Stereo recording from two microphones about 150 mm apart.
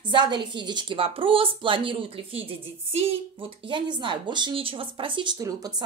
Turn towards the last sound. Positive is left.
turn(degrees=-25)  # may be behind; listen again after turning